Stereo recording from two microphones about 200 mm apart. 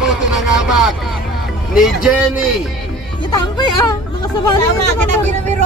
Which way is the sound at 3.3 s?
20° left (ahead or behind).